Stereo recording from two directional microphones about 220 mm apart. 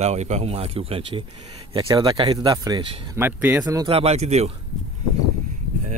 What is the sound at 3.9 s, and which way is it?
Speech, 30° right (ahead or behind).